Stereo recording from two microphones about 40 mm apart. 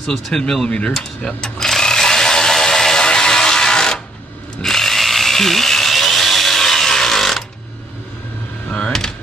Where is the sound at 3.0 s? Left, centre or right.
Centre.